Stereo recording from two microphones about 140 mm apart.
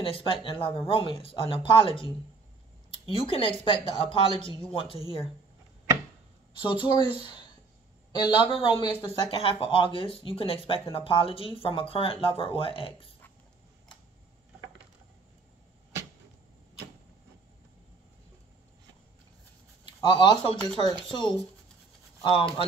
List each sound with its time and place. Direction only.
0.0 s speech: 40° left (ahead or behind)
6.6 s speech: 35° left (ahead or behind)
8.1 s speech: 35° left (ahead or behind)
20.0 s speech: 35° left (ahead or behind)